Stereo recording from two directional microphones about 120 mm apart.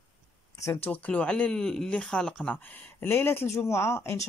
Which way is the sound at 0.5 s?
25° left (ahead or behind).